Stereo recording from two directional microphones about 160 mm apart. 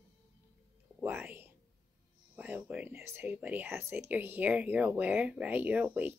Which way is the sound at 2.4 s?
10° right (ahead or behind).